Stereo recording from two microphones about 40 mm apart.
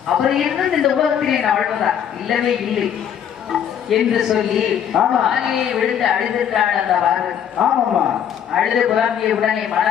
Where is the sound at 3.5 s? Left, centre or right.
Centre.